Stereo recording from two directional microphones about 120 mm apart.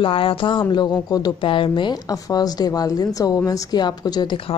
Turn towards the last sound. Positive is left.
turn(degrees=45)  # may be behind; listen again after turning